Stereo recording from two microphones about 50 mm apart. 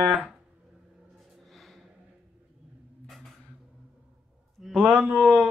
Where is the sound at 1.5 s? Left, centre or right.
Centre.